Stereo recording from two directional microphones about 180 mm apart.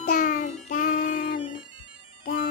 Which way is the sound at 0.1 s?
45° left (ahead or behind).